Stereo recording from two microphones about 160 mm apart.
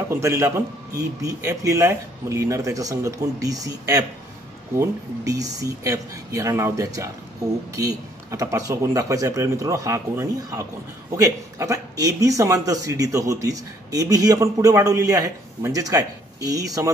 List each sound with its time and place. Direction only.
0.1 s a man's voice: 15° right (ahead or behind)